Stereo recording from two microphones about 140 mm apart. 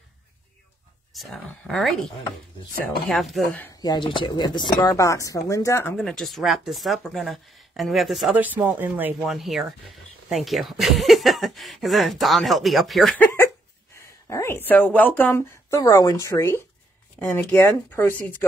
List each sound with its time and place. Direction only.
1.1 s speech: centre (ahead or behind)
3.1 s speech: centre (ahead or behind)
3.8 s speech: 30° left (ahead or behind)
5.9 s speech: 5° left (ahead or behind)
8.4 s speech: 10° right (ahead or behind)
9.2 s speech: centre (ahead or behind)
13.9 s speech: 20° left (ahead or behind)